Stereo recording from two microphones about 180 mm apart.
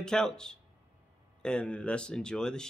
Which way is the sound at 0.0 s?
5° left (ahead or behind).